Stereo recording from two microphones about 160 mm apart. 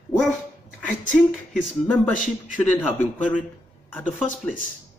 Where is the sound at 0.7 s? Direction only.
5° left (ahead or behind).